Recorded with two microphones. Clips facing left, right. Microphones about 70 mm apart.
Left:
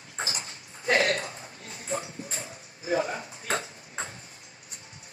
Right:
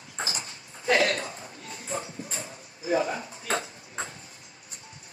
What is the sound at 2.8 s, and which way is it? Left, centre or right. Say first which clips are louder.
Speech: right 2 dB; left.